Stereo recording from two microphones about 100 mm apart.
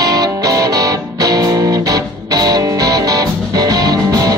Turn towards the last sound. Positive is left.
turn(degrees=-40)  # may be behind; listen again after turning